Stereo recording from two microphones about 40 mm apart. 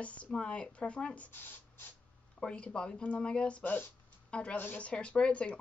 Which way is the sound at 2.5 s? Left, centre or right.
Left.